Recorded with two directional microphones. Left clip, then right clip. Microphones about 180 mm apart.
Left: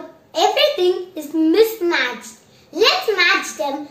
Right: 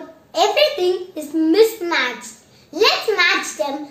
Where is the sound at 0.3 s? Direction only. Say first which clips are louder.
Even; 5° right (ahead or behind).